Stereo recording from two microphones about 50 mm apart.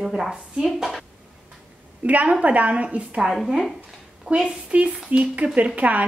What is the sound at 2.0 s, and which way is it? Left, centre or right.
A woman's voice, right.